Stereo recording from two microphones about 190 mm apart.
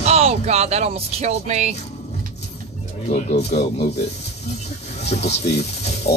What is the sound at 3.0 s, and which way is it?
Speech, 40° left (ahead or behind).